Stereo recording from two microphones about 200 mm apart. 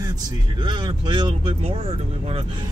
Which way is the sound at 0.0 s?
20° right (ahead or behind).